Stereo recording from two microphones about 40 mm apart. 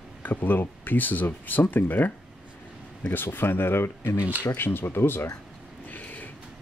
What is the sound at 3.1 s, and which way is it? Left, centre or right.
Speech, left.